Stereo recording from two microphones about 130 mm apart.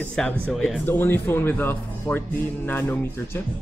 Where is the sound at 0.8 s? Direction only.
15° left (ahead or behind).